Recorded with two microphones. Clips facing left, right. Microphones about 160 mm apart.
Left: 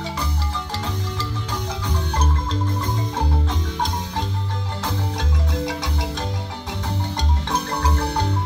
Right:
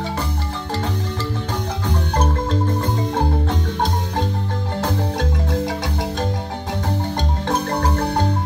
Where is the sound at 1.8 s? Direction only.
50° right (ahead or behind).